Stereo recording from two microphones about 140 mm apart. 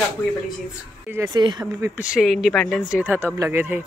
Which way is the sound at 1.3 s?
30° right (ahead or behind).